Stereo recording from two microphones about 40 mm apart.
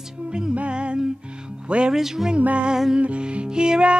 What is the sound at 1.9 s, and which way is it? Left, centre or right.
Speech, centre.